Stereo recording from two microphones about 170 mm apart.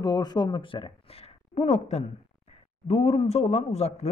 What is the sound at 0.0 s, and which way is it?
A man's voice, 25° left (ahead or behind).